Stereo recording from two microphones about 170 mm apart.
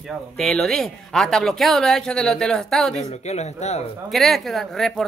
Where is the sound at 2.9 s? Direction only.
40° left (ahead or behind).